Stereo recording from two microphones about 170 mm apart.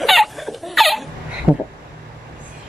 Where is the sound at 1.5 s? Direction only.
5° right (ahead or behind).